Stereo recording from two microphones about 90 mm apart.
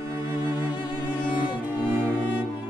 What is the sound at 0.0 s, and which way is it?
Music, 40° right (ahead or behind).